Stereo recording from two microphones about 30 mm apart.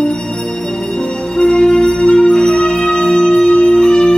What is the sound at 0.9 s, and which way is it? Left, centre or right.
Music, left.